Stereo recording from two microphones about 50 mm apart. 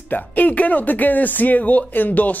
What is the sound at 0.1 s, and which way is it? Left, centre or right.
Speech, left.